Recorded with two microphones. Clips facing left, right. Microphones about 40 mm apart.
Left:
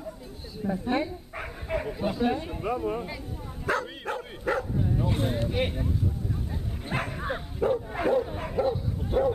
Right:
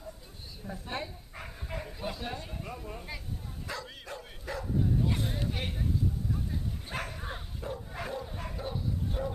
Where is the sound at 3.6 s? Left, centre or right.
Left.